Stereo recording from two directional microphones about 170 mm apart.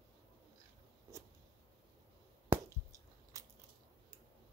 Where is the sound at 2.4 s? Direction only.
20° right (ahead or behind).